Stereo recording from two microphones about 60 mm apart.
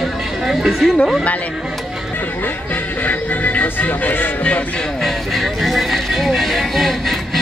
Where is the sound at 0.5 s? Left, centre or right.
Centre.